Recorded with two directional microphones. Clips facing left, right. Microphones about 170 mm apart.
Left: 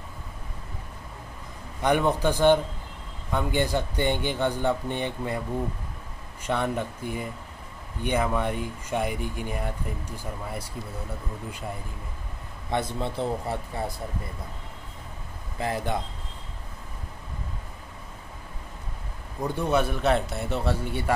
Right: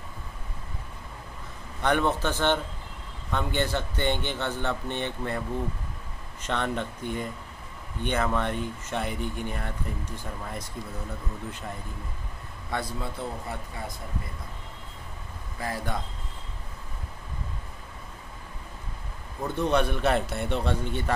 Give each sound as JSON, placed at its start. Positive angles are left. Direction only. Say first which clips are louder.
{"t": 1.8, "sound": "speech", "louder": "left 2 dB", "side_deg": 15}
{"t": 6.4, "sound": "speech", "louder": "left 2 dB", "side_deg": 10}
{"t": 12.7, "sound": "speech", "louder": "left 4 dB", "side_deg": 25}
{"t": 15.6, "sound": "speech", "louder": "left 4 dB", "side_deg": 20}
{"t": 19.4, "sound": "a man's voice", "louder": "even", "side_deg": 10}